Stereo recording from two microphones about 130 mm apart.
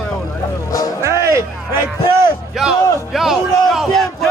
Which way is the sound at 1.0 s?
20° right (ahead or behind).